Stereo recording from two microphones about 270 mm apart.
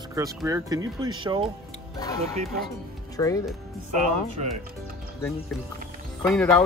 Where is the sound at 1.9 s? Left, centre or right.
Centre.